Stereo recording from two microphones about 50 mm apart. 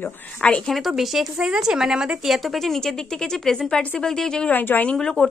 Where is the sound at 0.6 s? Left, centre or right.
Centre.